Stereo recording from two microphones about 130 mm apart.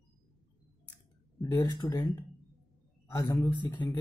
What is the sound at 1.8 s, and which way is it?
Speech, 35° left (ahead or behind).